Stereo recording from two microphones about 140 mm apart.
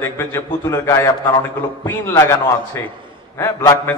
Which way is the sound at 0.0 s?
15° left (ahead or behind).